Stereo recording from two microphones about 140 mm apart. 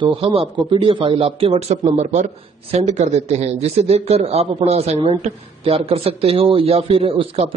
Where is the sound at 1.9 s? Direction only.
55° right (ahead or behind).